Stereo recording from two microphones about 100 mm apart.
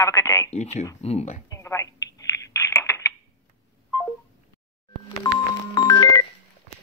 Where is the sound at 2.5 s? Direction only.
30° left (ahead or behind).